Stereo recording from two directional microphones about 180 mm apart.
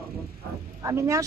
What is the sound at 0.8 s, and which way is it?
Speech, 15° right (ahead or behind).